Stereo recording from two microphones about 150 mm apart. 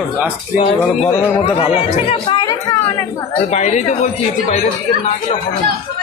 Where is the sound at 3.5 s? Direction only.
50° left (ahead or behind).